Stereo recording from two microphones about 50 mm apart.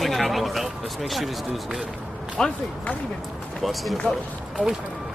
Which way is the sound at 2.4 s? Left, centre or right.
Centre.